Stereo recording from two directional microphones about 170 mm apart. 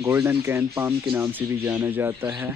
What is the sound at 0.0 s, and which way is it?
A man's voice, 15° right (ahead or behind).